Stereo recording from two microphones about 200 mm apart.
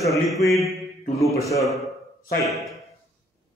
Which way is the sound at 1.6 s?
Centre (ahead or behind).